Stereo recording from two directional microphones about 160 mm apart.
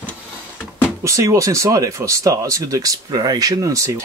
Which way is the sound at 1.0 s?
20° right (ahead or behind).